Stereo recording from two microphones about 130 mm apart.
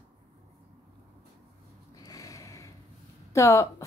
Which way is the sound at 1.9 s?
25° left (ahead or behind).